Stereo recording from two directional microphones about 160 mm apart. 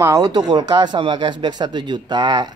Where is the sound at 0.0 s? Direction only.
20° right (ahead or behind).